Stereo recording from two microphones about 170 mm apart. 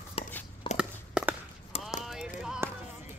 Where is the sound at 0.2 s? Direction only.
35° left (ahead or behind).